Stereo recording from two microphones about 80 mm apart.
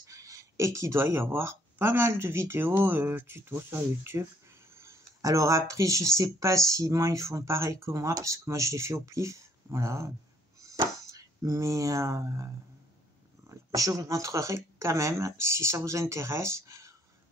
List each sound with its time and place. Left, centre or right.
0.0 s speech: right
13.7 s speech: right